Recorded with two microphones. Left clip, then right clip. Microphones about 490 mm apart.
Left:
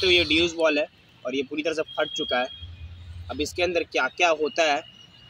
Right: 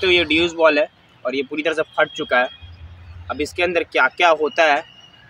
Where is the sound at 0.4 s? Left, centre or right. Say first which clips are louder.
Right 7 dB; left.